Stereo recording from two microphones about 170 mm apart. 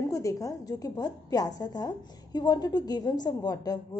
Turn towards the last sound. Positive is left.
turn(degrees=25)  # may be behind; listen again after turning